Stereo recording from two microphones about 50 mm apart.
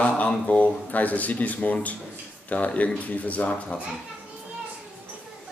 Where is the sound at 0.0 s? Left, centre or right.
Left.